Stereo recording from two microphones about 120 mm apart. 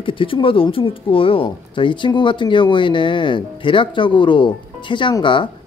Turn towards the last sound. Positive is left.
turn(degrees=40)  # may be behind; listen again after turning